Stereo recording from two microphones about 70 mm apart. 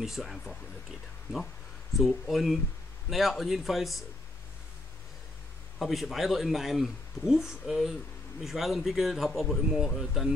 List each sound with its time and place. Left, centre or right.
0.0 s speech: centre
2.0 s speech: centre
5.8 s speech: centre